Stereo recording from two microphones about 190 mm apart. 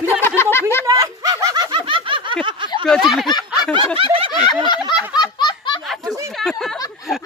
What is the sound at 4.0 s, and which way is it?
Snicker, 30° right (ahead or behind).